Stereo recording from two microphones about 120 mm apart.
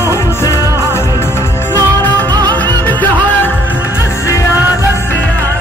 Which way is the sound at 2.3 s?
35° right (ahead or behind).